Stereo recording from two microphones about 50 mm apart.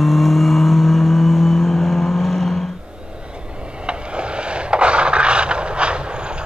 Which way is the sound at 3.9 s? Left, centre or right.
Right.